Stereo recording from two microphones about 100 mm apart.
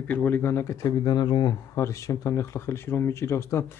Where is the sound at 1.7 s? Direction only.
30° left (ahead or behind).